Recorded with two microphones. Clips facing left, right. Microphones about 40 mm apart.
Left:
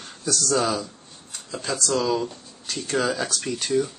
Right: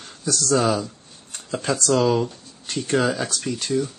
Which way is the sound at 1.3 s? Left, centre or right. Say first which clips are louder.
Right 5 dB; right.